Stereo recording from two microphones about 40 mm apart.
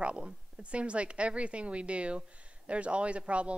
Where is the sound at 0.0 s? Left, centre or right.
Right.